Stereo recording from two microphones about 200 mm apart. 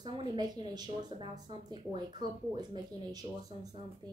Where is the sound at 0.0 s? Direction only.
20° right (ahead or behind).